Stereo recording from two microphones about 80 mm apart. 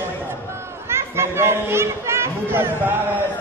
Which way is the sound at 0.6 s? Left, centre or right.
Right.